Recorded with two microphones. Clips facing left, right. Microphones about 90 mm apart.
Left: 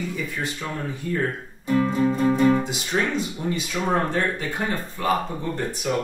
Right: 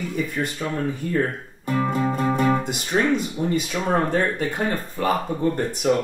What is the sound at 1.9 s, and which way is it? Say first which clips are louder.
Speech: left 2 dB; 55° right (ahead or behind).